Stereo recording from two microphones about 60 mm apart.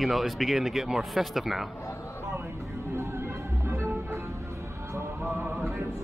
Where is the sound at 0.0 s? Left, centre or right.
Centre.